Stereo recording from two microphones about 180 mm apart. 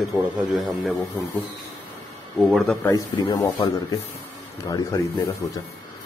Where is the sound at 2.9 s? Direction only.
20° left (ahead or behind).